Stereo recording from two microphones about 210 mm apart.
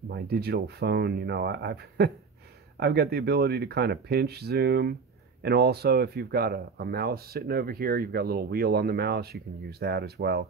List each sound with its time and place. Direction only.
0.1 s speech: 50° right (ahead or behind)